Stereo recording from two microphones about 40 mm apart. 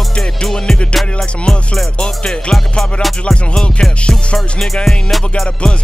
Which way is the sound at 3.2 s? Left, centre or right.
Centre.